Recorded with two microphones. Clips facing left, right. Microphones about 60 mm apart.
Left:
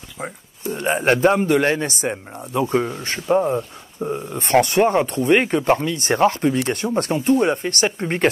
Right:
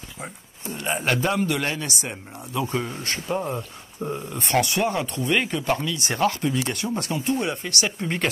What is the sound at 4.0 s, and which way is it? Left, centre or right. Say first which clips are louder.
Speech: left 4 dB; left.